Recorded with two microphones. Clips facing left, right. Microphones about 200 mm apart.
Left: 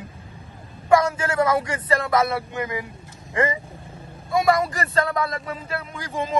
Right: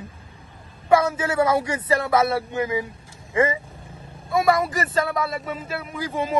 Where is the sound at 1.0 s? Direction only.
10° right (ahead or behind).